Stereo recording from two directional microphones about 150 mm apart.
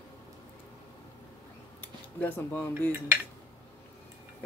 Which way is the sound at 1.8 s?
15° left (ahead or behind).